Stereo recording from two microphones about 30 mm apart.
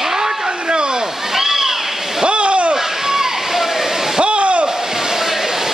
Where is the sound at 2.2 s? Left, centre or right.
Right.